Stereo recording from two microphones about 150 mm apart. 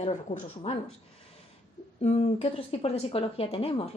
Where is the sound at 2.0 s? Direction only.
45° left (ahead or behind).